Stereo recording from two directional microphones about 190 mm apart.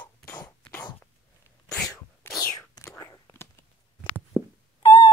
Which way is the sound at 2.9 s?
15° left (ahead or behind).